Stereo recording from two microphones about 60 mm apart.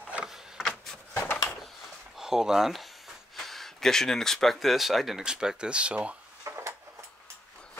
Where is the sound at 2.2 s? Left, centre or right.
Centre.